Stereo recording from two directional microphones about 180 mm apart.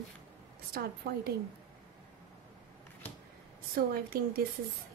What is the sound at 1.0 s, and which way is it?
Speech, 55° right (ahead or behind).